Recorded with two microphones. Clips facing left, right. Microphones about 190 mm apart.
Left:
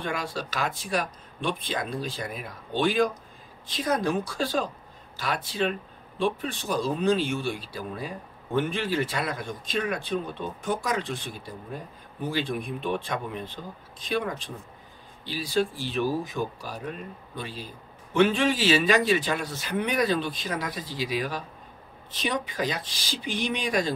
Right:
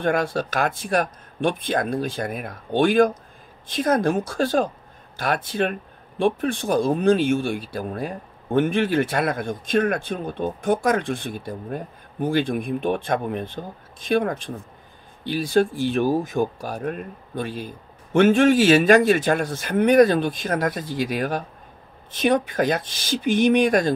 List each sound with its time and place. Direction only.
0.0 s speech: 50° right (ahead or behind)